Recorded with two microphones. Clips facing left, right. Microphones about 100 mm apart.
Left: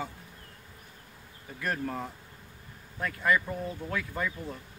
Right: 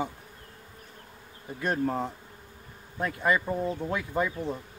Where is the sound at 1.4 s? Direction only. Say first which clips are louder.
Right 5 dB; 25° right (ahead or behind).